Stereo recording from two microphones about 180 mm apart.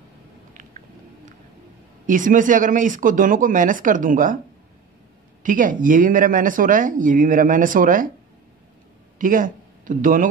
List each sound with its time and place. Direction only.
2.0 s speech: 45° right (ahead or behind)
5.4 s speech: 45° right (ahead or behind)
9.2 s speech: 45° right (ahead or behind)